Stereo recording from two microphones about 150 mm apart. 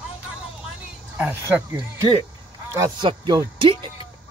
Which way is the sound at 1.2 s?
10° right (ahead or behind).